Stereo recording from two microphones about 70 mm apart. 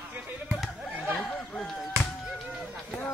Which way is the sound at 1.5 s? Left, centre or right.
Centre.